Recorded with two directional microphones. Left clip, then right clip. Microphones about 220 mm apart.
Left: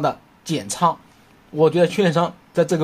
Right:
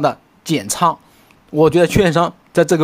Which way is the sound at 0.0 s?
30° right (ahead or behind).